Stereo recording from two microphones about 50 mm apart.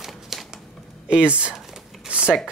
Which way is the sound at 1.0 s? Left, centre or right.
Right.